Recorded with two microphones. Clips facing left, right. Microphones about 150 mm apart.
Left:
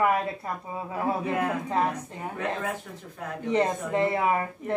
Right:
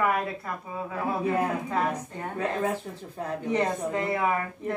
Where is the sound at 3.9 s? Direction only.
30° left (ahead or behind).